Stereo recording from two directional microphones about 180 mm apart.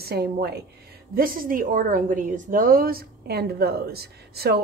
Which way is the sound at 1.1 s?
50° right (ahead or behind).